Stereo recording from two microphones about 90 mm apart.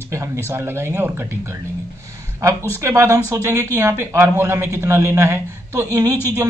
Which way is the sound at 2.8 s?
35° right (ahead or behind).